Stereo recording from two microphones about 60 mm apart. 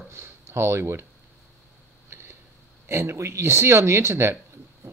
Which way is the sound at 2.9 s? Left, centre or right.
Right.